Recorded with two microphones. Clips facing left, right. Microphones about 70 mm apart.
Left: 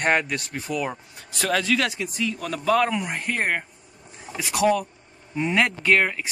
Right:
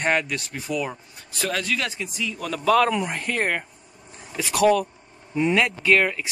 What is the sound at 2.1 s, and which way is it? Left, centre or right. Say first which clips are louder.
Speech: left 1 dB; left.